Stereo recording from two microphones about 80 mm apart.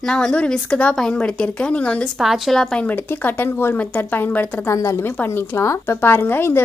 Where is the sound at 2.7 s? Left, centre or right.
Left.